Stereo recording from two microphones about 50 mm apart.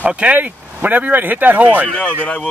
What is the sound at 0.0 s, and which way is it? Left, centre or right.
Speech, right.